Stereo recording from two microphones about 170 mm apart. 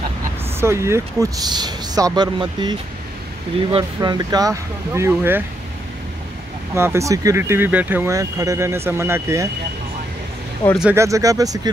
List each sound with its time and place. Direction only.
0.6 s speech: 15° right (ahead or behind)
3.7 s speech: 25° right (ahead or behind)
6.7 s speech: 15° right (ahead or behind)
10.6 s speech: 10° left (ahead or behind)
11.0 s speech: 20° right (ahead or behind)